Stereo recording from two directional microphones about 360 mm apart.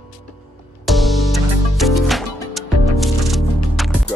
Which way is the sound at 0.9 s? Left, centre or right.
Centre.